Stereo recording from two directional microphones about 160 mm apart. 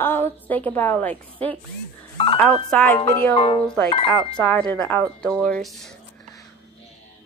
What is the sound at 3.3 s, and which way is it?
Speech, 35° left (ahead or behind).